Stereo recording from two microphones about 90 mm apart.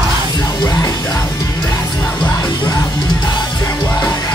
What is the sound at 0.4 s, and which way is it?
Music, 55° left (ahead or behind).